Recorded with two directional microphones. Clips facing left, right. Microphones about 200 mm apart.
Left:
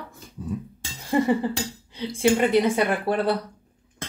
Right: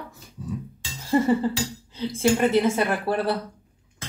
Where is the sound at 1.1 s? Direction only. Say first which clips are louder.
Right 1 dB; 15° left (ahead or behind).